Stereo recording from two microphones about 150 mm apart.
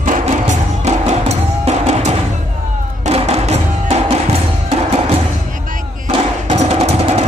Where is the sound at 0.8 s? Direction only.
45° right (ahead or behind).